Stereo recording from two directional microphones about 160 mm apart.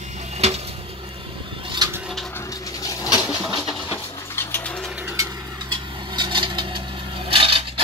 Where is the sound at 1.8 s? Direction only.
25° right (ahead or behind).